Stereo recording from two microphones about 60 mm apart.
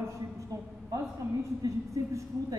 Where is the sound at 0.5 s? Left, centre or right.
Right.